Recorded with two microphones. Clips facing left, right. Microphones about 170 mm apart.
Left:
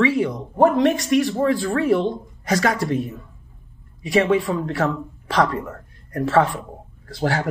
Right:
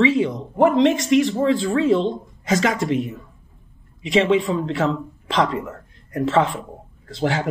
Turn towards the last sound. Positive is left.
turn(degrees=-20)  # may be behind; listen again after turning